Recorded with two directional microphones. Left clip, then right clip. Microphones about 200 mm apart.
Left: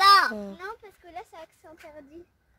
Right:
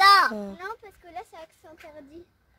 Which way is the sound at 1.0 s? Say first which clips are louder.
Right 1 dB; 30° left (ahead or behind).